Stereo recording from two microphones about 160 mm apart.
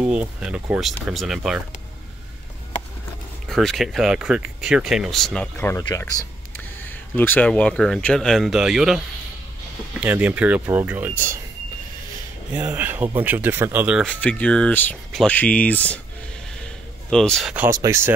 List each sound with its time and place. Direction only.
0.0 s speech: 5° right (ahead or behind)
3.4 s speech: centre (ahead or behind)
5.6 s speech: 15° left (ahead or behind); by 11.3 s 10° right (ahead or behind)
12.5 s speech: 10° right (ahead or behind)
14.0 s speech: 5° left (ahead or behind)
16.6 s a sound: 5° left (ahead or behind)
17.6 s speech: 20° right (ahead or behind)